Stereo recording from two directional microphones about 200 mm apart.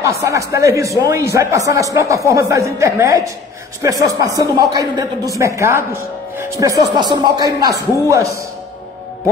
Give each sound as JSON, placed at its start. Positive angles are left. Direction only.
{"t": 0.0, "sound": "a man's voice", "side_deg": -15}